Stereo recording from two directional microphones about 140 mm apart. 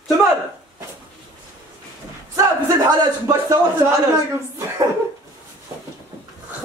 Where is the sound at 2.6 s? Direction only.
25° right (ahead or behind).